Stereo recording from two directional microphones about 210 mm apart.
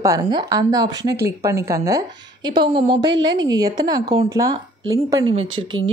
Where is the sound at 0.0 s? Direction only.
15° right (ahead or behind).